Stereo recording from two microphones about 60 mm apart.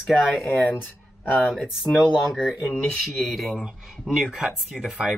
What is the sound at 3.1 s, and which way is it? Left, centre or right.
Speech, centre.